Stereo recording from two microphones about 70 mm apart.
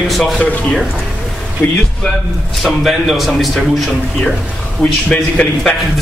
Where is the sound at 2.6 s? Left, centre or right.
Centre.